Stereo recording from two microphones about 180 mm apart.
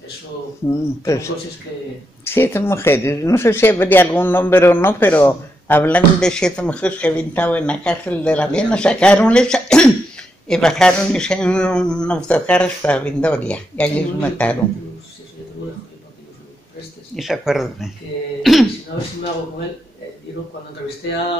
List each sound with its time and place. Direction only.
0.7 s speech: 15° left (ahead or behind)
17.1 s speech: centre (ahead or behind)
18.9 s speech: 90° left